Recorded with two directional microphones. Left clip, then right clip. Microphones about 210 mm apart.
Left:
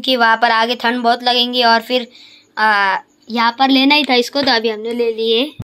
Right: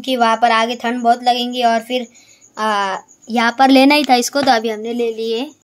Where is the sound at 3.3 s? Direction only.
35° right (ahead or behind); by 4.9 s 20° right (ahead or behind).